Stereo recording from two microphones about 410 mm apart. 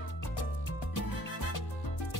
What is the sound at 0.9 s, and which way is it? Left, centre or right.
Music, left.